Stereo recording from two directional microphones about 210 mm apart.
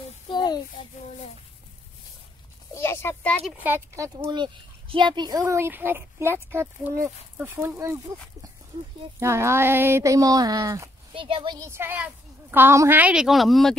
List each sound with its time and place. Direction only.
0.3 s a sound: 20° left (ahead or behind)
2.7 s speech: 10° left (ahead or behind)
3.6 s speech: 10° right (ahead or behind)